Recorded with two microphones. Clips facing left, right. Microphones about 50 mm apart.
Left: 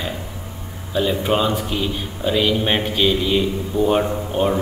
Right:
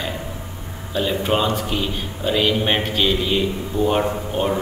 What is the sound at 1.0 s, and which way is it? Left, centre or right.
A man's voice, centre.